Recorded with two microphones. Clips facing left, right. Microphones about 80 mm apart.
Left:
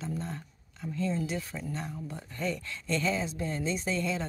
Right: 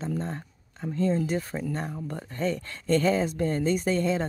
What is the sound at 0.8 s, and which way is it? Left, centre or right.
Speech, right.